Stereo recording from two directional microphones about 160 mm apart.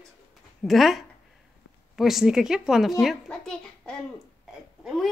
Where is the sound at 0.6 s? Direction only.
Centre (ahead or behind).